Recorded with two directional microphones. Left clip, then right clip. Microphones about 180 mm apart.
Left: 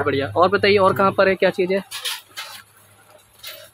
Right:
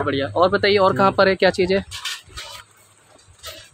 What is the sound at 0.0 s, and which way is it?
Speech, 10° left (ahead or behind).